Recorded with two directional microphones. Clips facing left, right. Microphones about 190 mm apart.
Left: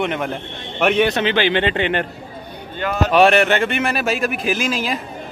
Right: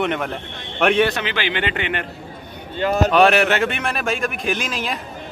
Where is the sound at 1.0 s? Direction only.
25° left (ahead or behind).